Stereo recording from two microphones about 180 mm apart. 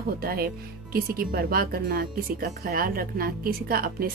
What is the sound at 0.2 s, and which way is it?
Speech, 55° right (ahead or behind).